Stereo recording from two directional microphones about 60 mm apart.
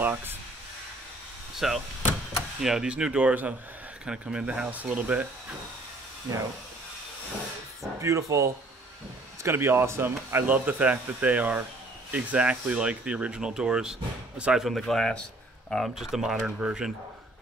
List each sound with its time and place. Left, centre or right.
0.0 s speech: right
1.6 s speech: centre
2.9 s speech: centre
6.3 s speech: right
8.0 s speech: right
9.4 s speech: right; by 14.7 s centre
14.7 s speech: centre
15.9 s speech: centre